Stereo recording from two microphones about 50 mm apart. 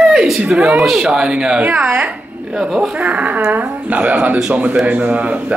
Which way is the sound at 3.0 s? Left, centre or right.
Right.